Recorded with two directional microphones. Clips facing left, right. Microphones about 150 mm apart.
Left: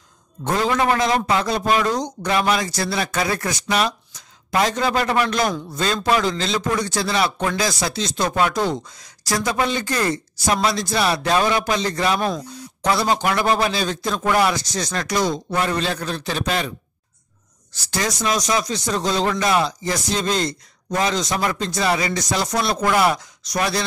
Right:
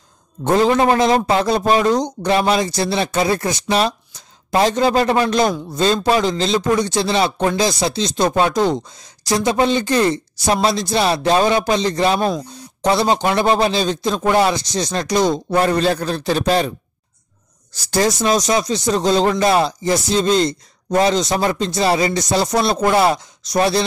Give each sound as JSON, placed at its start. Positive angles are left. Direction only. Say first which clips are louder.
{"t": 0.4, "sound": "speech", "louder": "right 6 dB", "side_deg": -25}
{"t": 15.3, "sound": "speech", "louder": "right 6 dB", "side_deg": -35}
{"t": 17.9, "sound": "speech", "louder": "right 6 dB", "side_deg": -30}